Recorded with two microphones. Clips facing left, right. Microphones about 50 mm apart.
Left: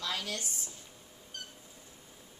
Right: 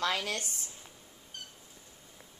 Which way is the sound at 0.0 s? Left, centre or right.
Right.